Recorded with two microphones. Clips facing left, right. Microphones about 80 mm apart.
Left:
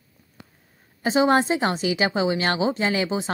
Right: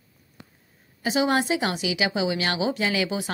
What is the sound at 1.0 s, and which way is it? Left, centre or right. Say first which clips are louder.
A woman's voice: left 4 dB; left.